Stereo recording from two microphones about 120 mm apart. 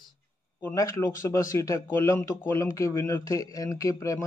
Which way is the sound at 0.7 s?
30° left (ahead or behind).